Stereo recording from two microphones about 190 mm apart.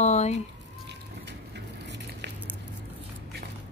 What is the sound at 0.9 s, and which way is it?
Music, 65° right (ahead or behind).